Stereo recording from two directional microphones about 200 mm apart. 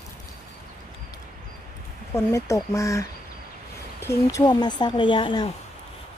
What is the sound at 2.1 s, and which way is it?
Speech, 15° left (ahead or behind).